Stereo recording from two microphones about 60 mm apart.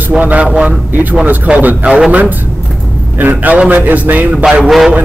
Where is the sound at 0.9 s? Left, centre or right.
Right.